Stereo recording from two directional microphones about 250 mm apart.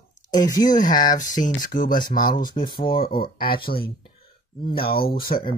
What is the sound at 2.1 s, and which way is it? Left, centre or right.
Speech, centre.